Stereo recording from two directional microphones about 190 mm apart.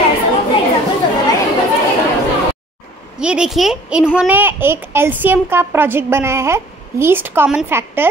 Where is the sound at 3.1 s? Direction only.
5° right (ahead or behind).